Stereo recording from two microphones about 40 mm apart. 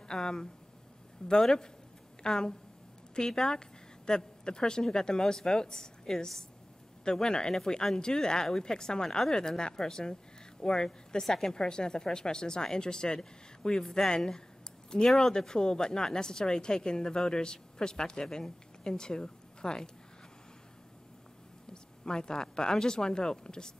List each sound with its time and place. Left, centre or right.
0.1 s a woman's voice: centre
22.0 s speech: centre